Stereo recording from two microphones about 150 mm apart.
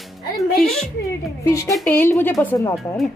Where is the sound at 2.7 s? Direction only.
Centre (ahead or behind).